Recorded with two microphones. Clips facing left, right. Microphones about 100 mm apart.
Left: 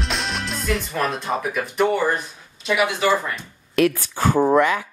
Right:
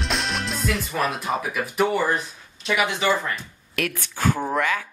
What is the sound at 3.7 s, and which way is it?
Speech, 25° left (ahead or behind).